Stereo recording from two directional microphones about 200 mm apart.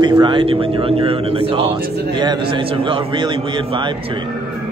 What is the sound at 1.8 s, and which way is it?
Speech, 55° right (ahead or behind).